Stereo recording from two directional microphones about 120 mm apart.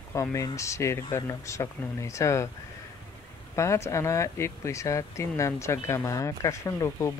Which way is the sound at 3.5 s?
25° left (ahead or behind).